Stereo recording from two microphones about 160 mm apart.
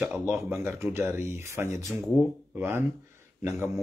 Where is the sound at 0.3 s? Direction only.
15° right (ahead or behind).